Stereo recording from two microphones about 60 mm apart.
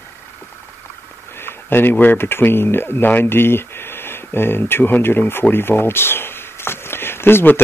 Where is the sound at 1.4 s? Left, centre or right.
Left.